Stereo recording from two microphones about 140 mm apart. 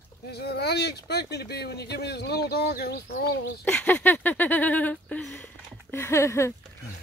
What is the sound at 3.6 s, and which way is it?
Speech, 15° left (ahead or behind).